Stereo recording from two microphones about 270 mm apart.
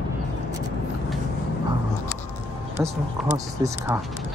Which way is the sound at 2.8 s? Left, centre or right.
Centre.